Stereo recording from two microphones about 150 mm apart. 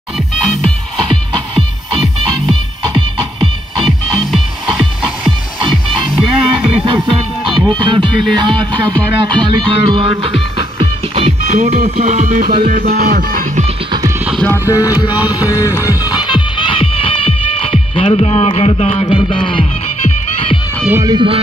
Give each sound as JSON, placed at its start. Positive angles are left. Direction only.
{"t": 3.8, "sound": "music", "side_deg": 0}
{"t": 7.6, "sound": "music", "side_deg": -30}
{"t": 12.6, "sound": "music", "side_deg": -75}
{"t": 13.1, "sound": "music", "side_deg": -65}
{"t": 14.7, "sound": "music", "side_deg": 20}
{"t": 15.0, "sound": "music", "side_deg": -10}
{"t": 15.6, "sound": "music", "side_deg": 20}
{"t": 16.1, "sound": "music", "side_deg": 30}
{"t": 21.0, "sound": "speech", "side_deg": -30}